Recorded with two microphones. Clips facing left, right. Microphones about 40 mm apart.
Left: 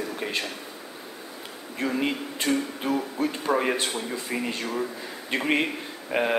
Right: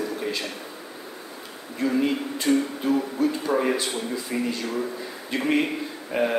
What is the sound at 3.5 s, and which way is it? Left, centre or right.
A man's voice, centre.